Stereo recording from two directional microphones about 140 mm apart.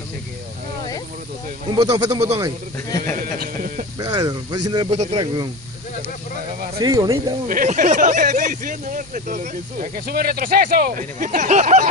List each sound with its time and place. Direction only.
1.8 s speech: 25° right (ahead or behind)
3.2 s a sound: 70° right (ahead or behind)
4.0 s speech: 30° right (ahead or behind)
4.8 s speech: 45° right (ahead or behind)
5.2 s speech: 30° right (ahead or behind)
6.8 s speech: 30° right (ahead or behind)
7.4 s speech: 70° right (ahead or behind)